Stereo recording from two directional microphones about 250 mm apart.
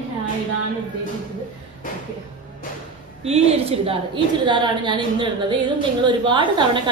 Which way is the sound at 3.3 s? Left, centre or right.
Right.